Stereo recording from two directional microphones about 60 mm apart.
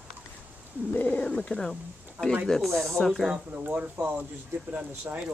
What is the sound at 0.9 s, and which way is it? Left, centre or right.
Speech, left.